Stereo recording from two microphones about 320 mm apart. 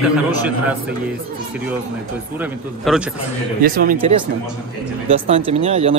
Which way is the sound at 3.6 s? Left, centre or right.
Right.